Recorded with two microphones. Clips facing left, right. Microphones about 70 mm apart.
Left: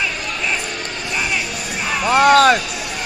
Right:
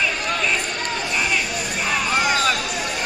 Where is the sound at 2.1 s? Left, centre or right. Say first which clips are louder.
Left 11 dB; left.